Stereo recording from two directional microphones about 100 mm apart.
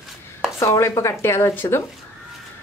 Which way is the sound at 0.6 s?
30° left (ahead or behind).